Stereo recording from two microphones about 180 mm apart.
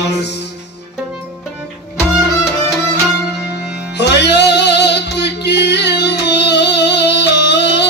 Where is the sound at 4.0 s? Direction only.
70° left (ahead or behind).